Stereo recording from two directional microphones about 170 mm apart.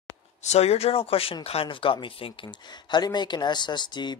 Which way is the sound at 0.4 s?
40° left (ahead or behind).